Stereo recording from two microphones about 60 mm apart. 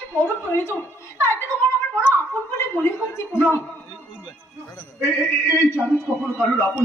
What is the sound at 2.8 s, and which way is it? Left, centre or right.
Speech, left.